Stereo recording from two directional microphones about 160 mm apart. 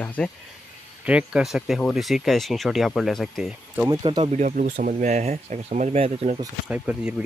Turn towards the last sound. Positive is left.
turn(degrees=-10)  # may be behind; listen again after turning